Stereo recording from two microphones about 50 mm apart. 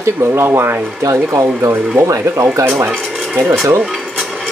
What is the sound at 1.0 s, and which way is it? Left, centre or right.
Speech, right.